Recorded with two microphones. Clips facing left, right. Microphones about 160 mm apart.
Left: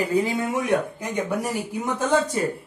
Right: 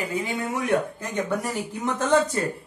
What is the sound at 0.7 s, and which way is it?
Speech, 15° left (ahead or behind).